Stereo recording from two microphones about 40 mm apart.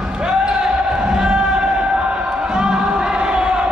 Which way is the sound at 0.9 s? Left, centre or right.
Right.